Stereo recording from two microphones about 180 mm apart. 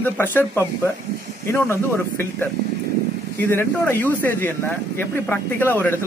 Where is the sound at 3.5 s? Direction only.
10° left (ahead or behind).